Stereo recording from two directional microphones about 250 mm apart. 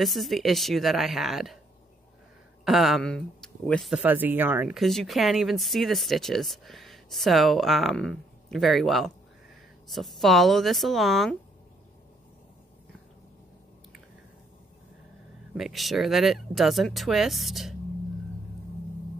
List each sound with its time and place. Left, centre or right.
0.0 s speech: centre
2.6 s speech: centre
15.5 s speech: centre